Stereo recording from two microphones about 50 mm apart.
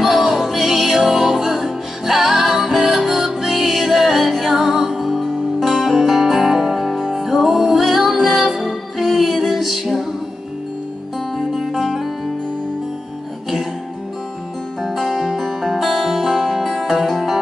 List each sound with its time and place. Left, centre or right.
0.0 s music: centre
11.3 s music: centre
14.8 s music: centre